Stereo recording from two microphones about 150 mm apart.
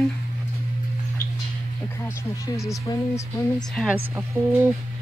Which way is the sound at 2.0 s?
20° left (ahead or behind).